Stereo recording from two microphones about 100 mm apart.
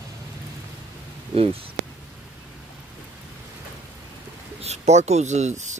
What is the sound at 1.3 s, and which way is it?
Speech, 70° right (ahead or behind).